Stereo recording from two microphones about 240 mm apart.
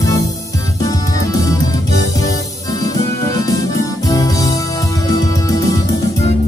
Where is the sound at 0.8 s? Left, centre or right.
Centre.